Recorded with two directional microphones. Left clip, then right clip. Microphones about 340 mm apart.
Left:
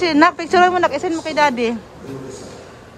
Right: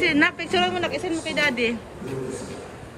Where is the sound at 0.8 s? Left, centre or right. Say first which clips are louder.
Left 8 dB; left.